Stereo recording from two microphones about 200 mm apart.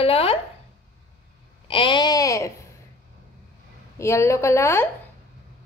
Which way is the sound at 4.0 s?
15° left (ahead or behind).